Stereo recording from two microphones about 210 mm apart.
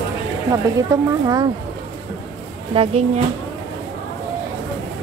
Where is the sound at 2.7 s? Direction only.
30° right (ahead or behind).